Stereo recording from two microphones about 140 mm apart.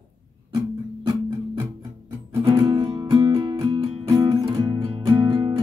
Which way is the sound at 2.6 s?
25° right (ahead or behind).